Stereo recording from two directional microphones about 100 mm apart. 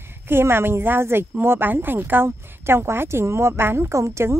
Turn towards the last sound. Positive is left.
turn(degrees=-30)  # may be behind; listen again after turning